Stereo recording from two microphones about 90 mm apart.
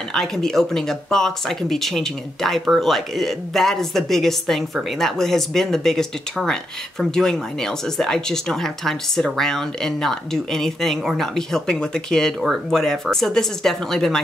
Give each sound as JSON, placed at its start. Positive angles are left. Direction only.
{"t": 0.1, "sound": "speech", "side_deg": 5}